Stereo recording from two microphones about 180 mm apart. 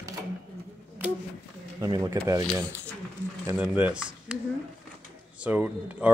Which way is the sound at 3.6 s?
5° right (ahead or behind).